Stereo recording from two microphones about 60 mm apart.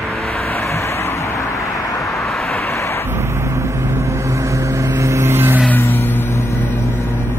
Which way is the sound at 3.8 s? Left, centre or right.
Right.